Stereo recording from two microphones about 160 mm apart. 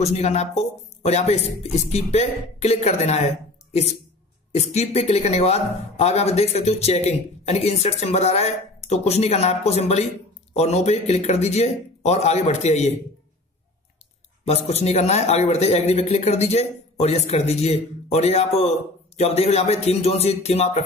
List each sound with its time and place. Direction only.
0.0 s speech: 45° left (ahead or behind)
4.5 s a man's voice: 40° left (ahead or behind)
14.4 s a man's voice: 40° left (ahead or behind)